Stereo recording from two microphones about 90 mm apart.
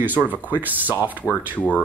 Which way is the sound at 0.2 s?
20° right (ahead or behind).